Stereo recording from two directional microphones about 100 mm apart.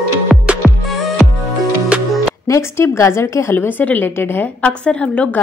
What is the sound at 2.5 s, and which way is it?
A woman's voice, 25° left (ahead or behind).